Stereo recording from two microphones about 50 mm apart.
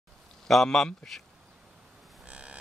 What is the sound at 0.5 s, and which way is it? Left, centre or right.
Speech, centre.